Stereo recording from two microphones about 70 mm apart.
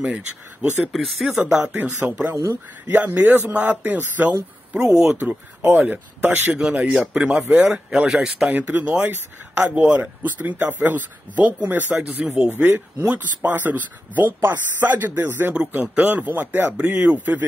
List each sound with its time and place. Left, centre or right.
0.0 s speech: centre
0.9 s speech: centre
1.6 s speech: right
2.3 s speech: right
2.9 s speech: right
4.7 s speech: centre
5.0 s speech: right
6.5 s speech: centre
7.4 s speech: right
7.7 s speech: centre
8.5 s speech: right
12.4 s speech: right